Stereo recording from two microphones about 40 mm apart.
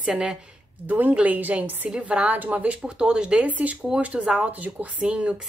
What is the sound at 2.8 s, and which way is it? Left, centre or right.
Speech, right.